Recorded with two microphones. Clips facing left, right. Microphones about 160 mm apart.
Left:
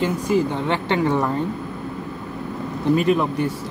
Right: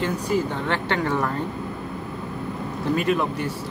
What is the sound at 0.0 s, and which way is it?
Speech, 15° left (ahead or behind).